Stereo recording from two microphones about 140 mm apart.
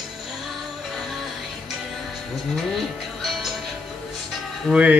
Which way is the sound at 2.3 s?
Centre (ahead or behind).